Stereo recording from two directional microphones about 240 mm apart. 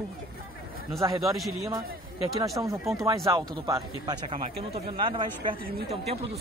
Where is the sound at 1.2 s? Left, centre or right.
Centre.